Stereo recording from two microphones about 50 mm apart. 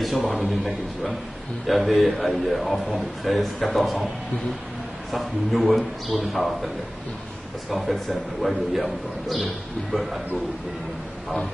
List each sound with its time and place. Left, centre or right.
0.3 s speech: centre
5.1 s speech: centre
7.7 s speech: centre